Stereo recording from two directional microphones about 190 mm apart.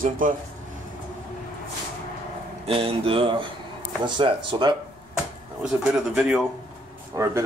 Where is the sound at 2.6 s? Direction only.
30° right (ahead or behind).